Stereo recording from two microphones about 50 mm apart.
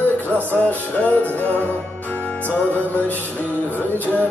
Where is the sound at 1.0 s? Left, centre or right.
Left.